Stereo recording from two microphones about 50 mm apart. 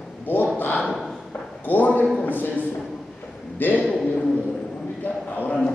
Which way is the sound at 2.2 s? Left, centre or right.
Left.